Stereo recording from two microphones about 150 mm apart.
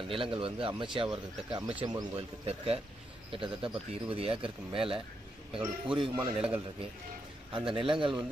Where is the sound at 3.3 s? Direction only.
35° right (ahead or behind).